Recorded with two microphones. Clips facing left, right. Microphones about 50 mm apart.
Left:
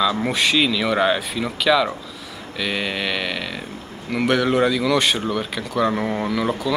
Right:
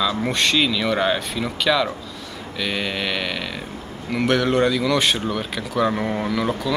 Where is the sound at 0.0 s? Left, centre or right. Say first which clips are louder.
Left 1 dB; centre.